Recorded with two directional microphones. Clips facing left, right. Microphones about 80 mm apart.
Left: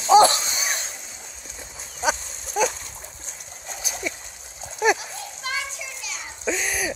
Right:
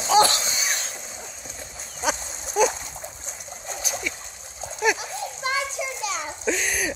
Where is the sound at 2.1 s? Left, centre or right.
Centre.